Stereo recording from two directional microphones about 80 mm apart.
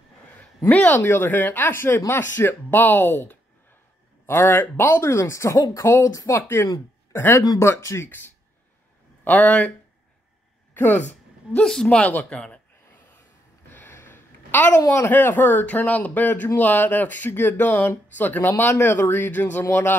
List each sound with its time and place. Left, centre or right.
0.7 s speech: centre; by 5.9 s left
5.9 s speech: left
6.1 s speech: left; by 9.7 s centre
10.7 s a woman's voice: left
11.5 s a woman's voice: centre
13.7 s a sound: left
15.0 s speech: left